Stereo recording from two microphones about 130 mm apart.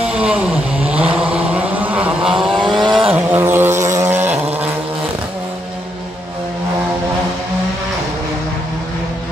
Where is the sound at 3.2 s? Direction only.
15° right (ahead or behind).